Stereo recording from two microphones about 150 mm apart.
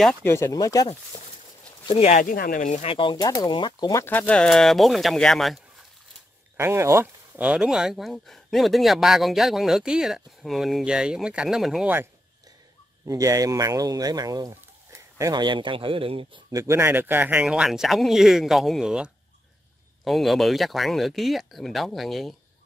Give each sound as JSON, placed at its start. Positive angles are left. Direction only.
{"t": 0.2, "sound": "speech", "side_deg": 15}
{"t": 2.0, "sound": "speech", "side_deg": 55}
{"t": 2.3, "sound": "speech", "side_deg": 65}
{"t": 4.0, "sound": "speech", "side_deg": 10}
{"t": 6.5, "sound": "speech", "side_deg": -15}
{"t": 13.0, "sound": "speech", "side_deg": -20}
{"t": 16.5, "sound": "speech", "side_deg": -20}